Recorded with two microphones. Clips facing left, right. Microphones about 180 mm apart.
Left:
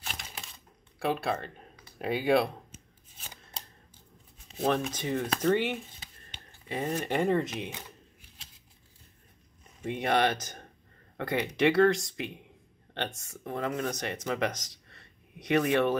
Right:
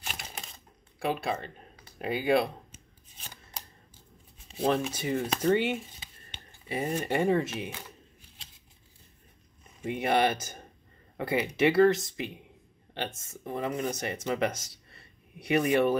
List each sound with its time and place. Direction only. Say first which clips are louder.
0.0 s typewriter: right 1 dB; 5° right (ahead or behind)
0.9 s a sound: left 1 dB; centre (ahead or behind)
3.6 s typewriter: even; 25° left (ahead or behind)
4.6 s speech: right 1 dB; 5° right (ahead or behind)
9.8 s speech: right 1 dB; 5° right (ahead or behind)